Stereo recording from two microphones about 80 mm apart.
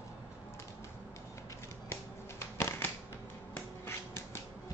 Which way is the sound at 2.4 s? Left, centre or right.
Left.